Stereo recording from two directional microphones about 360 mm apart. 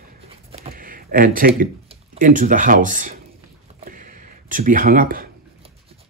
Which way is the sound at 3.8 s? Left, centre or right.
Right.